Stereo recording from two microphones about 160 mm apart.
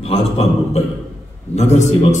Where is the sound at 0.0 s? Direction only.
40° left (ahead or behind).